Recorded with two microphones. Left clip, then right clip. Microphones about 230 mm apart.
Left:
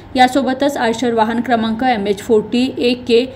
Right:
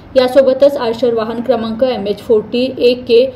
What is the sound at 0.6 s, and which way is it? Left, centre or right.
A woman's voice, left.